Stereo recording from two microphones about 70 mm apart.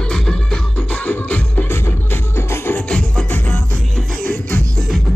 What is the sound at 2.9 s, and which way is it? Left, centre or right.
Music, centre.